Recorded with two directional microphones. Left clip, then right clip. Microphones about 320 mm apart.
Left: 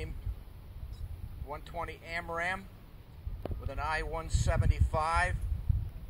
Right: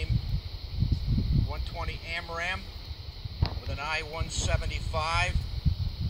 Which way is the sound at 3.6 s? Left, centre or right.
Centre.